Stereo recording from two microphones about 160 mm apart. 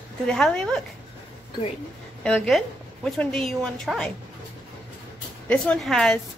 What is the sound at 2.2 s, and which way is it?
A woman's voice, 5° left (ahead or behind).